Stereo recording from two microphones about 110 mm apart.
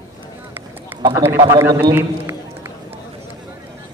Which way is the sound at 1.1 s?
25° right (ahead or behind).